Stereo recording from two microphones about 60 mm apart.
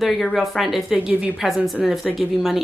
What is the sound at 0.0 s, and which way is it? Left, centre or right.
A woman's voice, centre.